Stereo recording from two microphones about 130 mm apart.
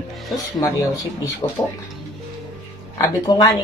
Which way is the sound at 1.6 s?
25° left (ahead or behind).